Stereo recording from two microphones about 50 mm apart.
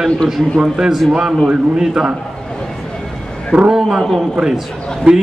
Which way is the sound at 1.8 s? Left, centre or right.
Centre.